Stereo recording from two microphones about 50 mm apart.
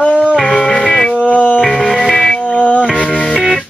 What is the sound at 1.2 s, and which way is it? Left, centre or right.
Music, left.